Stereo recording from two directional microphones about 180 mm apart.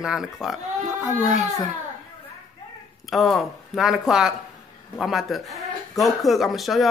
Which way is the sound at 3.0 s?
Centre (ahead or behind).